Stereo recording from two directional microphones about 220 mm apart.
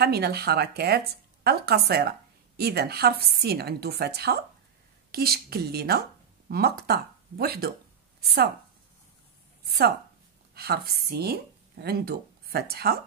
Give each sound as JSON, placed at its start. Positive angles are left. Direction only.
{"t": 0.0, "sound": "a woman's voice", "side_deg": -45}
{"t": 9.7, "sound": "a woman's voice", "side_deg": -45}